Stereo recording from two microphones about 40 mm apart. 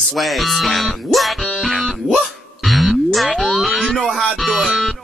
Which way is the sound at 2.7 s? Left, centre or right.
Centre.